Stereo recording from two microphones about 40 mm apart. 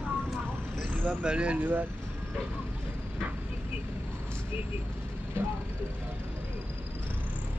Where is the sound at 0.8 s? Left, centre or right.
Right.